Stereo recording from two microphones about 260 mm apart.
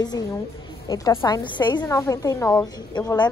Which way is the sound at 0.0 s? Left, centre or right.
Centre.